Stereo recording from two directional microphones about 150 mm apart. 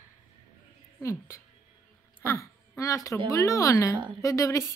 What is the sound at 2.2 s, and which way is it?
A woman's voice, 20° left (ahead or behind).